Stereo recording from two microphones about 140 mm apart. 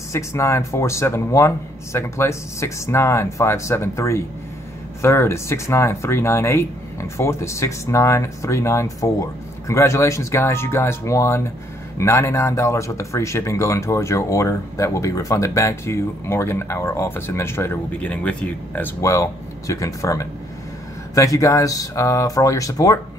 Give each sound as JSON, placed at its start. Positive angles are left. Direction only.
{"t": 0.1, "sound": "speech", "side_deg": 20}